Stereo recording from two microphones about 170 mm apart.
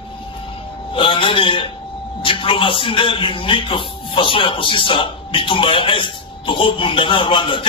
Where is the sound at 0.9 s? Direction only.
30° left (ahead or behind).